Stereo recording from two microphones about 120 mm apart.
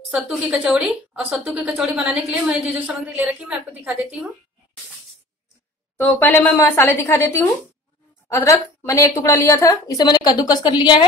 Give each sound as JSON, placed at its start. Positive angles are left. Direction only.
{"t": 0.1, "sound": "a woman's voice", "side_deg": -10}
{"t": 5.9, "sound": "a woman's voice", "side_deg": 20}